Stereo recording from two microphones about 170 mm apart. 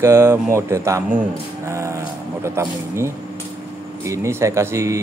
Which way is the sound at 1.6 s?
15° right (ahead or behind).